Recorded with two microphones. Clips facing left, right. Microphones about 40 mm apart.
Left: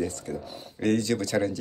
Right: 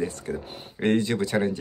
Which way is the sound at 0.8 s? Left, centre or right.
Right.